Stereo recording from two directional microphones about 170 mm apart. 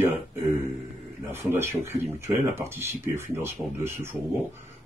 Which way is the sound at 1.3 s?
15° right (ahead or behind).